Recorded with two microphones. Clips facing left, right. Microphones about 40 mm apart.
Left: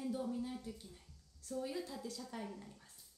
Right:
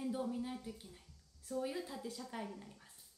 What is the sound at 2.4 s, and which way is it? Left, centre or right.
Speech, centre.